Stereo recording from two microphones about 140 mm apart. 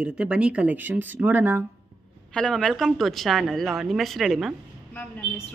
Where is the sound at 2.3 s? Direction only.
5° left (ahead or behind).